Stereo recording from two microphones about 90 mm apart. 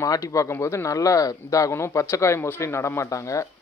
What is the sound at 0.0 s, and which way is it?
Speech, 40° left (ahead or behind).